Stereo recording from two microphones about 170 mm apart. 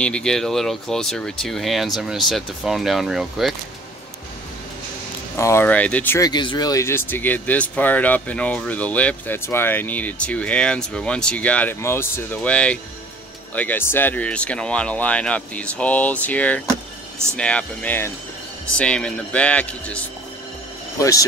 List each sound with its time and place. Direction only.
0.0 s speech: 5° left (ahead or behind)
5.3 s speech: 15° left (ahead or behind)
6.1 s speech: 25° left (ahead or behind); by 20.0 s 10° left (ahead or behind)
21.0 s speech: 20° left (ahead or behind)